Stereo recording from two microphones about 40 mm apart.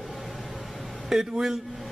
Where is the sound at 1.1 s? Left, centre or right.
Centre.